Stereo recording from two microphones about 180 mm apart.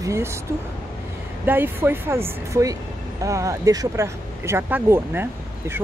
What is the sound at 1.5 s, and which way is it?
Speech, 10° right (ahead or behind).